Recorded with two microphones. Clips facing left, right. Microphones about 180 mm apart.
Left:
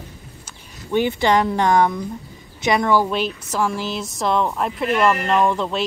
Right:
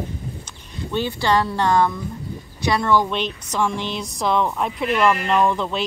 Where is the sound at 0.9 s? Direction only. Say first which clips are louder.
Left 3 dB; 15° left (ahead or behind); by 5.8 s centre (ahead or behind).